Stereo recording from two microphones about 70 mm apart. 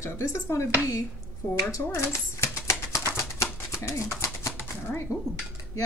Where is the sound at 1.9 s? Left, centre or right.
Left.